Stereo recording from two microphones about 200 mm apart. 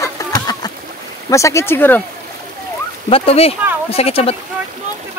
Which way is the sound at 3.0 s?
30° left (ahead or behind).